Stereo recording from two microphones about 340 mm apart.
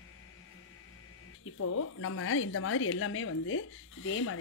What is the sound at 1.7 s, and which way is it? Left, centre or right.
A woman's voice, left.